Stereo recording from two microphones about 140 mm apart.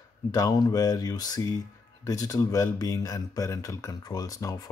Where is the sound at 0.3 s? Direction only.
30° left (ahead or behind).